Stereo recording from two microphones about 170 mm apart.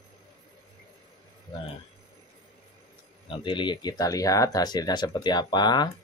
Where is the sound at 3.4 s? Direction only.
30° left (ahead or behind).